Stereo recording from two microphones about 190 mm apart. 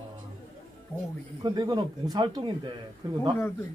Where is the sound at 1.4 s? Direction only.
20° right (ahead or behind).